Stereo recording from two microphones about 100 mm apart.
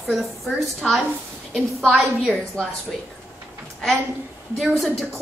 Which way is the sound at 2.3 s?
5° left (ahead or behind).